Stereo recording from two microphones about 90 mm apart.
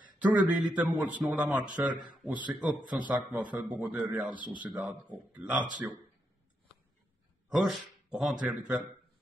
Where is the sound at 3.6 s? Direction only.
15° right (ahead or behind).